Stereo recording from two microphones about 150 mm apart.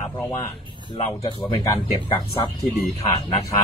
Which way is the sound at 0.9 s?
40° left (ahead or behind).